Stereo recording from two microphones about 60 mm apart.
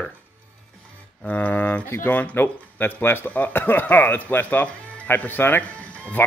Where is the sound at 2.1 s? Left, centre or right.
Left.